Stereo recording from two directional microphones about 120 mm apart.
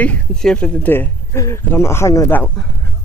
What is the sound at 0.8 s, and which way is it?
Speech, 15° left (ahead or behind).